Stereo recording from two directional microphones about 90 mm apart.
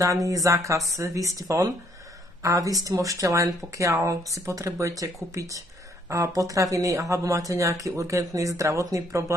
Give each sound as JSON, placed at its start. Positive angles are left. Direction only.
{"t": 0.0, "sound": "speech", "side_deg": -35}